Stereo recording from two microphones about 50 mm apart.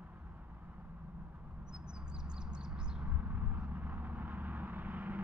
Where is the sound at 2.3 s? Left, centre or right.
Centre.